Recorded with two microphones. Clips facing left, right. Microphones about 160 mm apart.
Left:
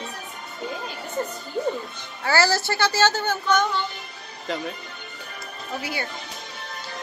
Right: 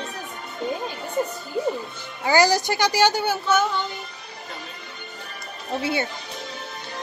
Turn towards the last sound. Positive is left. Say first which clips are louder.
# right 6 dB
turn(degrees=-25)  # may be behind; listen again after turning